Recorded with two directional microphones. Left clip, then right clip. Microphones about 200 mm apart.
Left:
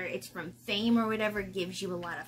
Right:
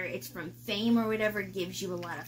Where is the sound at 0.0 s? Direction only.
5° left (ahead or behind).